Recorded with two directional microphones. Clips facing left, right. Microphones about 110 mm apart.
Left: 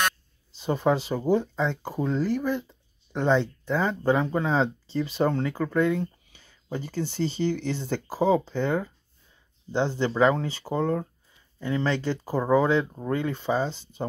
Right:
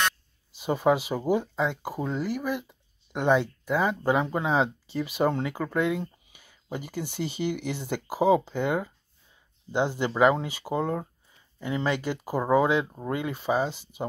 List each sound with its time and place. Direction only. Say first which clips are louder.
0.6 s speech: right 1 dB; 10° right (ahead or behind)